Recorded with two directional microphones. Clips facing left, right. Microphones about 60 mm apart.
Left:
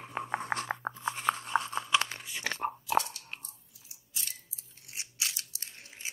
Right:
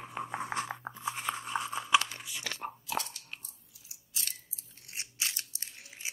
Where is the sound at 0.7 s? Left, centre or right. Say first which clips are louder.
Left 5 dB; left.